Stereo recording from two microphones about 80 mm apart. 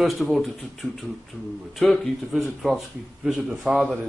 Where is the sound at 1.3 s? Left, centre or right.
Centre.